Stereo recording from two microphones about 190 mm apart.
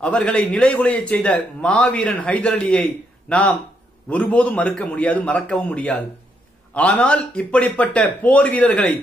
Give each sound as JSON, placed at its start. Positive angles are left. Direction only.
{"t": 0.0, "sound": "a man's voice", "side_deg": 5}